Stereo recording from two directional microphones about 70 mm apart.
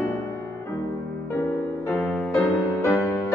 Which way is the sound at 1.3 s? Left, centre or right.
Left.